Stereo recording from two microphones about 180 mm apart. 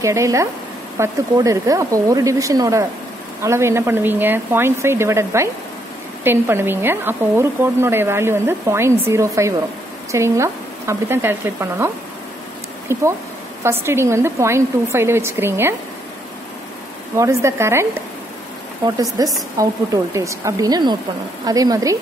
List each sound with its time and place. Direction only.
0.0 s speech: 15° right (ahead or behind)
12.9 s speech: 15° right (ahead or behind)
17.2 s speech: 15° right (ahead or behind)
19.2 s speech: 20° right (ahead or behind)